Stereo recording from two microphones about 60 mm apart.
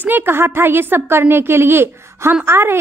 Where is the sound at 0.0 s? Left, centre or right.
Right.